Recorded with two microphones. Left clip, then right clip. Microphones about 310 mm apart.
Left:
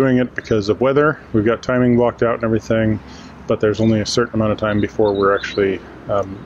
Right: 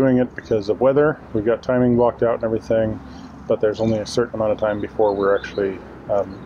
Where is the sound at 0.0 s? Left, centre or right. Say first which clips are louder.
Left 1 dB; left.